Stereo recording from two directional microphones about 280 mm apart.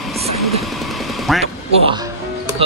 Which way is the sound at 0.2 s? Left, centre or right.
Centre.